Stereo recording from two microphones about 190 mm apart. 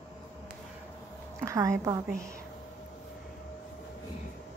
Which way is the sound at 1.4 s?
15° right (ahead or behind).